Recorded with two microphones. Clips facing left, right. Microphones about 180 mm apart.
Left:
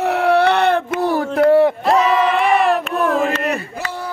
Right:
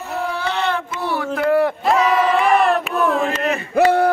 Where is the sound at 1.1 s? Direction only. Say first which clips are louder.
Left 5 dB; 35° left (ahead or behind).